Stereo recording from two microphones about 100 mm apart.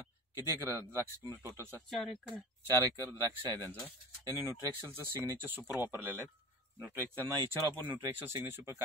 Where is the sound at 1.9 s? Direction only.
Centre (ahead or behind).